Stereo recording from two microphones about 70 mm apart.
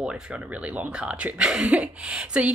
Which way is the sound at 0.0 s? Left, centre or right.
Centre.